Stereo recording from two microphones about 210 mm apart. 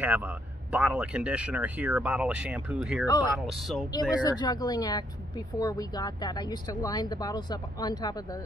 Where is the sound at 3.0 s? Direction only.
20° left (ahead or behind).